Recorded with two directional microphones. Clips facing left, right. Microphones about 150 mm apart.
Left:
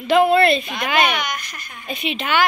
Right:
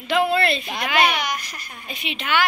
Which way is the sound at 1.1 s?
35° right (ahead or behind).